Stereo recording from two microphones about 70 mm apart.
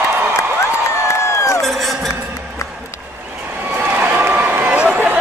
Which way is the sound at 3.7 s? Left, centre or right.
Right.